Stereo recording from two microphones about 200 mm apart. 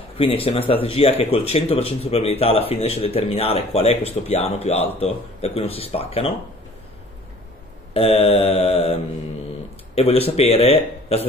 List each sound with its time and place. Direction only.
0.2 s speech: 25° left (ahead or behind)
7.9 s speech: 30° left (ahead or behind)